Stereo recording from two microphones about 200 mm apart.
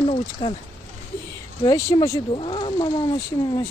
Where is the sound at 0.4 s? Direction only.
25° left (ahead or behind).